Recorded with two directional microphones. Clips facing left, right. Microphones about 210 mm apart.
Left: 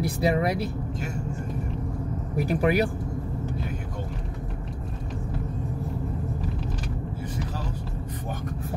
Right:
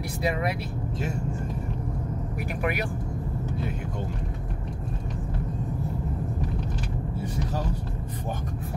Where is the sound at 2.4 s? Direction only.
35° left (ahead or behind).